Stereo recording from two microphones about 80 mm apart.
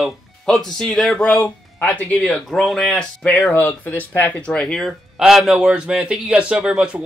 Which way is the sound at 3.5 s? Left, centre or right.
Left.